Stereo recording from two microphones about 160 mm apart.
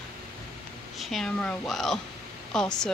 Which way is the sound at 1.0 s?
Centre (ahead or behind).